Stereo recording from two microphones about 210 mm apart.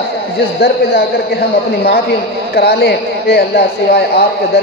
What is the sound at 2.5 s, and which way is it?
Speech, 50° left (ahead or behind).